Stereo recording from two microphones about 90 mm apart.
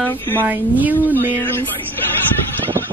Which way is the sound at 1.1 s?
25° left (ahead or behind).